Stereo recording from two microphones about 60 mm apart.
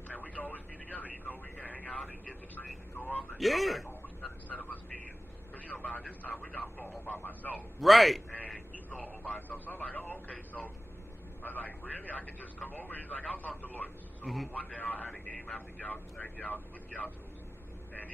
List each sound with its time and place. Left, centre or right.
0.1 s a sound: left
2.5 s speech: left
3.3 s speech: centre
4.5 s vehicle: left
5.7 s speech: left
7.8 s a man's voice: centre
8.3 s a sound: left
9.0 s speech: left
14.2 s a man's voice: centre
14.5 s speech: left
15.0 s speech: centre
15.5 s speech: left